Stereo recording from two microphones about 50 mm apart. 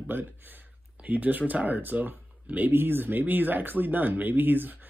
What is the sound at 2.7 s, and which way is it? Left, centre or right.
Speech, right.